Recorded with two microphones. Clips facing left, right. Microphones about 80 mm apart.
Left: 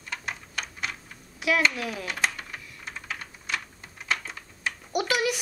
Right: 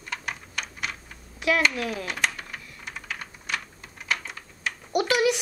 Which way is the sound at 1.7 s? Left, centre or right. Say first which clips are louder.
Right 2 dB; centre.